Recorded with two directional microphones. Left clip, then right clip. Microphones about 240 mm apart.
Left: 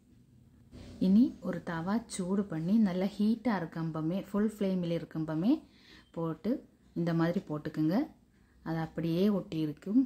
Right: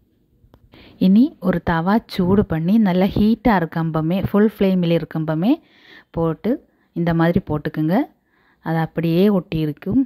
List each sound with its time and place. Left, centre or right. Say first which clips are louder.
0.9 s a woman's voice: right 11 dB; right